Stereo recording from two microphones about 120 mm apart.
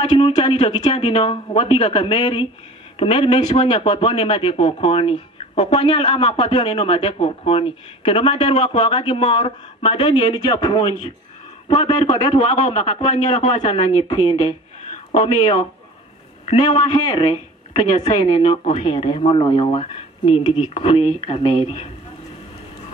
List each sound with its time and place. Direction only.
0.0 s a man's voice: 40° left (ahead or behind)
16.4 s a man's voice: 50° left (ahead or behind)
16.8 s a man's voice: 40° left (ahead or behind)